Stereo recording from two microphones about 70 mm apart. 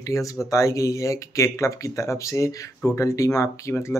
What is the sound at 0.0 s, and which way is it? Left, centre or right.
Speech, left.